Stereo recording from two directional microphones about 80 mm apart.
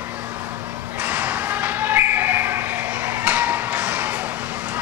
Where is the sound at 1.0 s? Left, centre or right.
Centre.